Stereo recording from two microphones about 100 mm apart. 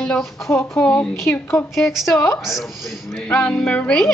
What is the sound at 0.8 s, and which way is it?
Music, 10° left (ahead or behind).